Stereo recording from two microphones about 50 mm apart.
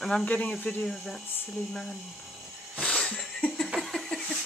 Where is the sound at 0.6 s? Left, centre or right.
Left.